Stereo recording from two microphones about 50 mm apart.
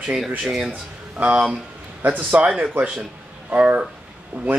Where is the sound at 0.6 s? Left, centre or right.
Right.